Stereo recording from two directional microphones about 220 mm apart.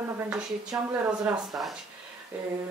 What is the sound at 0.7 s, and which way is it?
Speech, 5° right (ahead or behind).